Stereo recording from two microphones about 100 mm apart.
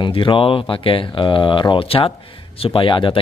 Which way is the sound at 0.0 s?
55° left (ahead or behind).